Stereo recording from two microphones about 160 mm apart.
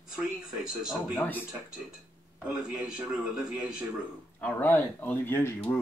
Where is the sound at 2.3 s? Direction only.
5° right (ahead or behind).